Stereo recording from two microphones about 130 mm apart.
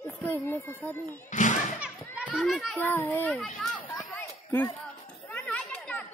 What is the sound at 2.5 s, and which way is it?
Speech, centre (ahead or behind).